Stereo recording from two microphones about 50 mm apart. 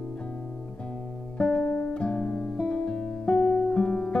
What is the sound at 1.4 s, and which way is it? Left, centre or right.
Music, centre.